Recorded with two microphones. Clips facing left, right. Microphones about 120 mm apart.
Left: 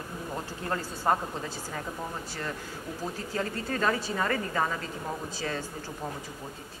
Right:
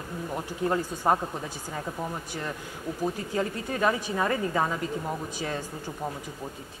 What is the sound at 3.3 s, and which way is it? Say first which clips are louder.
Speech: right 2 dB; 15° right (ahead or behind).